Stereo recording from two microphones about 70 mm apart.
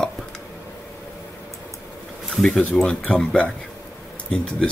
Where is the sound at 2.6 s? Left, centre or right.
Centre.